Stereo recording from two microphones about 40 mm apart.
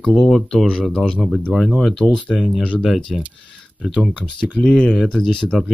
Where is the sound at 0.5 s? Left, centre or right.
Centre.